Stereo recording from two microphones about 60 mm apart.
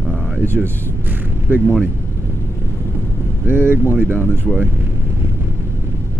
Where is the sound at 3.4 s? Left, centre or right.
Right.